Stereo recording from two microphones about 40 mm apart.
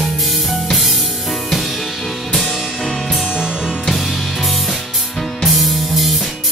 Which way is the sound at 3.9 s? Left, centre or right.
Centre.